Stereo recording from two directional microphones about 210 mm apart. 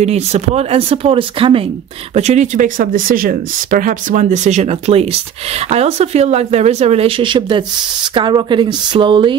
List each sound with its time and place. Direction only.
0.0 s speech: 30° right (ahead or behind)